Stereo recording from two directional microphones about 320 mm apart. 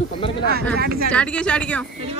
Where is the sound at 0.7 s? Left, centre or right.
Right.